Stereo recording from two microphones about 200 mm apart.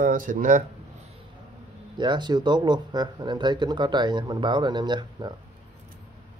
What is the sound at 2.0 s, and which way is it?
Speech, 20° right (ahead or behind).